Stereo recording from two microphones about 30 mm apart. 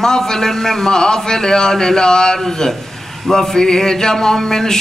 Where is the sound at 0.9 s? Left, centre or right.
Left.